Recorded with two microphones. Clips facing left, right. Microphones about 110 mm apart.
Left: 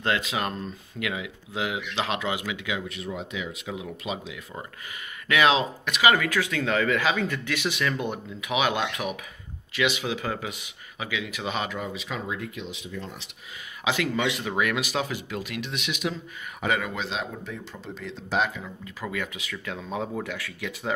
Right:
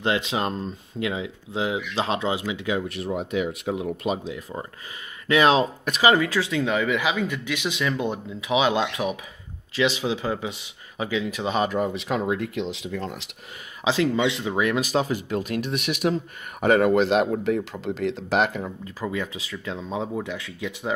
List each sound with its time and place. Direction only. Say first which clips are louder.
0.0 s speech: right 3 dB; 25° right (ahead or behind)
3.2 s speech: right 8 dB; 50° right (ahead or behind)
4.2 s speech: right 5 dB; 35° right (ahead or behind)
6.1 s speech: right 3 dB; 25° right (ahead or behind); by 13.2 s 90° right
13.8 s speech: right 4 dB; 25° right (ahead or behind)
14.6 s speech: right 4 dB; 35° right (ahead or behind); by 17.6 s 65° right (ahead or behind)
17.7 s speech: right 10 dB; 90° right; by 18.6 s 70° right (ahead or behind)
19.0 s speech: right 3 dB; 25° right (ahead or behind)